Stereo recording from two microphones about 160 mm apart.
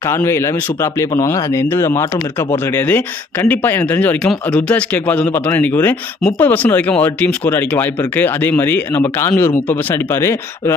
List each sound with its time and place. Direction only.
0.0 s speech: 15° left (ahead or behind)